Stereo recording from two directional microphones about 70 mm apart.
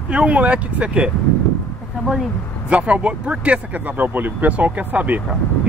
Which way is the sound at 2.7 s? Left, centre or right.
Centre.